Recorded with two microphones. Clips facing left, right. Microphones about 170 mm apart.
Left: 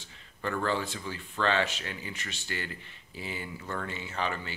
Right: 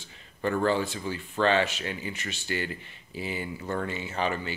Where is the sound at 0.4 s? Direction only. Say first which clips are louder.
Right 5 dB; 25° right (ahead or behind).